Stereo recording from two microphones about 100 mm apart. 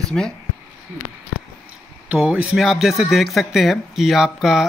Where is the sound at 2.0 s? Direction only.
10° right (ahead or behind).